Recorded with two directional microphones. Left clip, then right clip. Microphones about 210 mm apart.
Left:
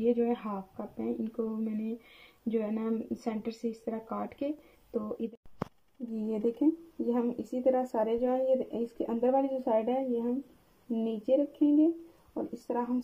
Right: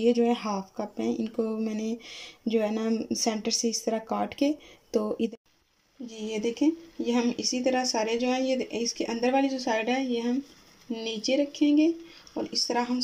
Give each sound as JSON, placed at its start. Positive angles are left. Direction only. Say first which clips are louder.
{"t": 0.0, "sound": "speech", "louder": "right 5 dB", "side_deg": -25}
{"t": 7.1, "sound": "speech", "louder": "right 5 dB", "side_deg": -15}